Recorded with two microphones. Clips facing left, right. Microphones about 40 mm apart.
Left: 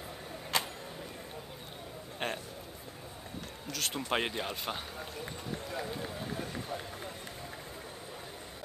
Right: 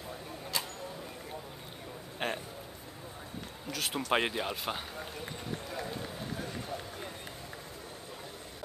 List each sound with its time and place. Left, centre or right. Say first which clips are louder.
0.5 s vehicle: left 4 dB; left
2.1 s a man's voice: right 1 dB; centre
3.6 s speech: right 1 dB; centre
4.1 s run: right 3 dB; centre